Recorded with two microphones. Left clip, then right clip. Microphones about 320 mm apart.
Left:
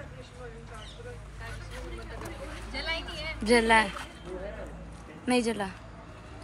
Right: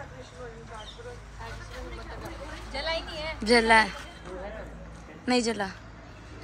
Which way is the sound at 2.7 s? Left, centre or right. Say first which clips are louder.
Right 3 dB; right.